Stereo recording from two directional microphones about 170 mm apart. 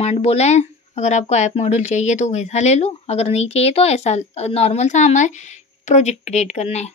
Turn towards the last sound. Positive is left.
turn(degrees=40)  # may be behind; listen again after turning